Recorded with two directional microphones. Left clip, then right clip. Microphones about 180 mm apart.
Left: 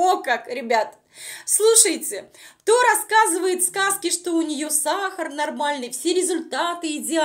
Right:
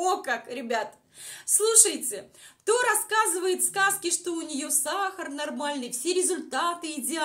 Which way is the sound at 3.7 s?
20° left (ahead or behind).